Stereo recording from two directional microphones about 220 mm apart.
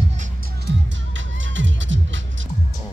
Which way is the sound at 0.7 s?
50° right (ahead or behind).